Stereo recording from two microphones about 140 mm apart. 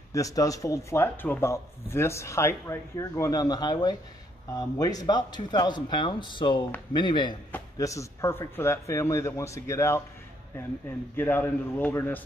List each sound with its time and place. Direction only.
0.1 s speech: 25° left (ahead or behind)
7.7 s a man's voice: 25° left (ahead or behind)